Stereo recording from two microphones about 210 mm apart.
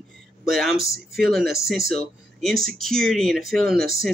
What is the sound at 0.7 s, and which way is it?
Speech, 45° right (ahead or behind).